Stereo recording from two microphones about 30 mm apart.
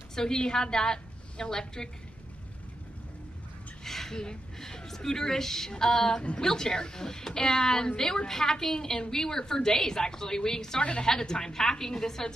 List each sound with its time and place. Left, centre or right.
0.1 s a woman's voice: left
3.8 s a sound: centre
4.2 s speech: left